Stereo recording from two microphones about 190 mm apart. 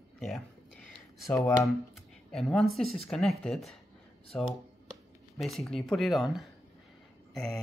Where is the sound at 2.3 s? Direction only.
Centre (ahead or behind).